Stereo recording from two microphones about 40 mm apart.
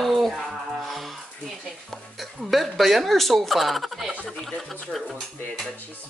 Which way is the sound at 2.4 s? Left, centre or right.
Centre.